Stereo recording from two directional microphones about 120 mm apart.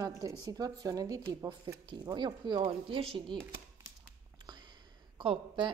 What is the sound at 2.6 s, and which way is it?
Speech, 50° right (ahead or behind).